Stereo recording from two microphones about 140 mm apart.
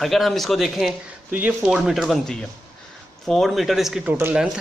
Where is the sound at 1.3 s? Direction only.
10° right (ahead or behind).